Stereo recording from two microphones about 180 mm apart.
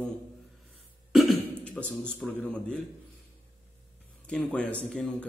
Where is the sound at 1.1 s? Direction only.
5° left (ahead or behind).